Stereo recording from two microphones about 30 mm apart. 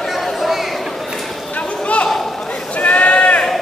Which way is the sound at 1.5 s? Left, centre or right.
Left.